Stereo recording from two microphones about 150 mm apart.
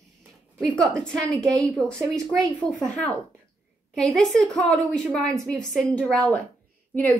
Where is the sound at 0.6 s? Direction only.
5° left (ahead or behind).